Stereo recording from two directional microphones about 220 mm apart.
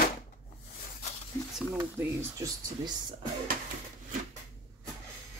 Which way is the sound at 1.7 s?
10° right (ahead or behind).